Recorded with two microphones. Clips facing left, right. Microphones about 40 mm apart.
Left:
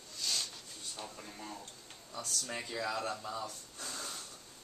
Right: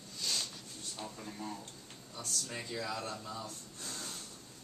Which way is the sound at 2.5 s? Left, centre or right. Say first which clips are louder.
Left 3 dB; left.